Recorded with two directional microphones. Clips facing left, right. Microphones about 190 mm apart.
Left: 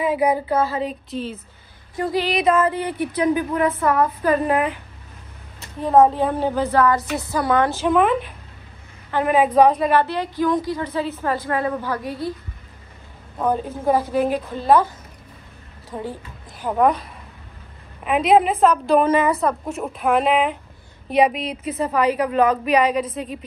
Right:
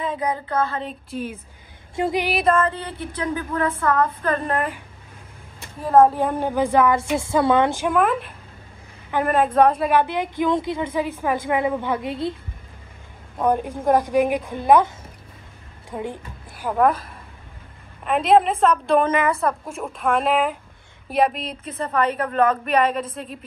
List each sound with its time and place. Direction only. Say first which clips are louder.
0.0 s speech: left 6 dB; 10° left (ahead or behind)
1.1 s a woman's voice: left 1 dB; 10° right (ahead or behind)
2.0 s speech: even; 25° right (ahead or behind)
2.2 s a woman's voice: left 3 dB; 5° right (ahead or behind)
2.5 s speech: left 2 dB; 10° left (ahead or behind)
5.8 s a woman's voice: even; centre (ahead or behind)
6.1 s a woman's voice: left 1 dB; 10° right (ahead or behind)
7.0 s speech: right 3 dB; 25° right (ahead or behind)
7.7 s a woman's voice: left 2 dB; 10° right (ahead or behind)
9.6 s a woman's voice: left 1 dB; 10° right (ahead or behind); by 12.4 s 25° right (ahead or behind)
13.4 s a woman's voice: right 1 dB; 10° right (ahead or behind)
16.0 s music: right 1 dB; 10° right (ahead or behind)
16.7 s a woman's voice: left 1 dB; centre (ahead or behind)